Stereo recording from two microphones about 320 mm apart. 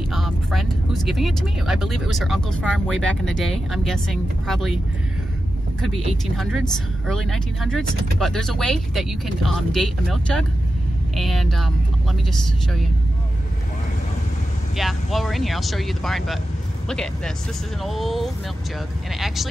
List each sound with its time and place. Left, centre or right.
0.1 s speech: centre
5.8 s speech: centre
14.8 s speech: centre